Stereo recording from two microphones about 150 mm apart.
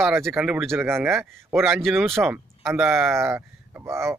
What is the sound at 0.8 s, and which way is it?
Speech, 15° right (ahead or behind).